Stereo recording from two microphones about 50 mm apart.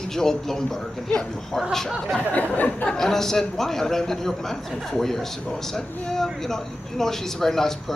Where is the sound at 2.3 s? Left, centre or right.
Left.